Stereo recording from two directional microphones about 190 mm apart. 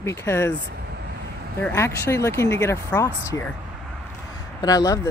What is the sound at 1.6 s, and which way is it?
Speech, 15° left (ahead or behind).